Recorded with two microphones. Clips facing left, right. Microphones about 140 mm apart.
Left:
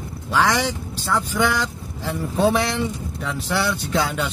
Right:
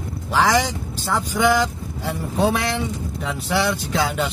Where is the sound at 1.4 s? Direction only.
10° right (ahead or behind).